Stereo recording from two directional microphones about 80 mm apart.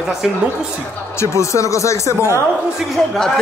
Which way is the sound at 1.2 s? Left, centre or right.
Left.